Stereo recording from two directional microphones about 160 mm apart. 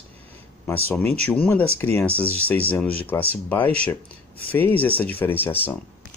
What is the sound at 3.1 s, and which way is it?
Speech, 15° left (ahead or behind).